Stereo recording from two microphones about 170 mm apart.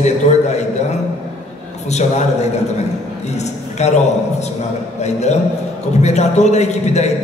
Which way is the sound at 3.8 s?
40° left (ahead or behind).